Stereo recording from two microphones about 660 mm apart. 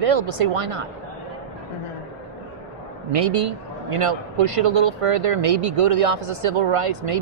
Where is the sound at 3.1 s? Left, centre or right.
Right.